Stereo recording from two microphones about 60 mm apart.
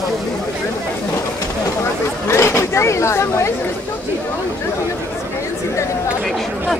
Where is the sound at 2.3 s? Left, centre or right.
Left.